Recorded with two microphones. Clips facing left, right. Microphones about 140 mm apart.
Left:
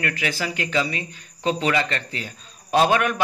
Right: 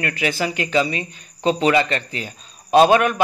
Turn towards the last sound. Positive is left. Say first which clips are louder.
# right 5 dB
turn(degrees=-20)  # may be behind; listen again after turning